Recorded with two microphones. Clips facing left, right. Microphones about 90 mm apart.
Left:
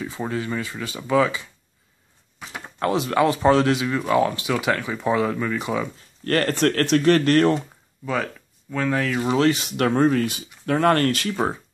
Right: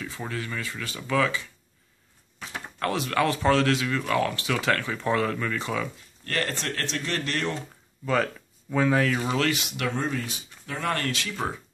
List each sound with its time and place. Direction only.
0.0 s speech: 20° left (ahead or behind)
2.3 s a sound: 5° left (ahead or behind)
2.6 s speech: 20° left (ahead or behind)
6.2 s speech: 50° left (ahead or behind)
8.0 s speech: 5° left (ahead or behind)
9.3 s speech: 30° left (ahead or behind)